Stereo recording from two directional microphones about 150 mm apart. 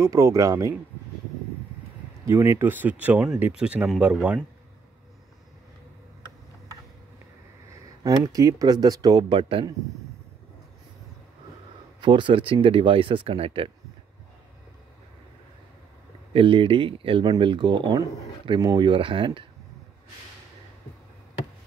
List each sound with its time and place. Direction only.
0.0 s speech: 20° right (ahead or behind)
2.2 s speech: 20° right (ahead or behind)
8.0 s speech: 20° right (ahead or behind)
12.0 s speech: 30° right (ahead or behind)
16.3 s speech: 35° right (ahead or behind)